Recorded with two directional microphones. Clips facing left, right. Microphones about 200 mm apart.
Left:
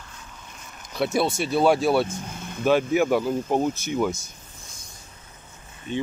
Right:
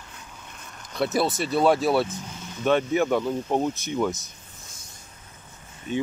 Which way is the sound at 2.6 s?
5° left (ahead or behind).